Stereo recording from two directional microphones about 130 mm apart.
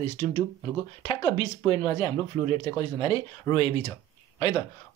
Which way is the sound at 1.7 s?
40° left (ahead or behind).